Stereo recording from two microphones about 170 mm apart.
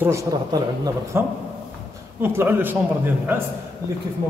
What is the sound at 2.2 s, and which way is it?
A man's voice, 15° right (ahead or behind).